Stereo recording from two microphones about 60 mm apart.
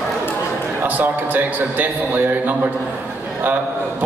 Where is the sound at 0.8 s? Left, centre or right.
Right.